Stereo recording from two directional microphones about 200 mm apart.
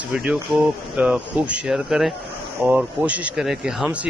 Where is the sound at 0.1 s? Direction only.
5° right (ahead or behind).